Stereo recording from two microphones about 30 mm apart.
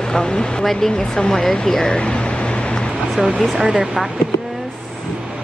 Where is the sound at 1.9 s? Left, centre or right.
Left.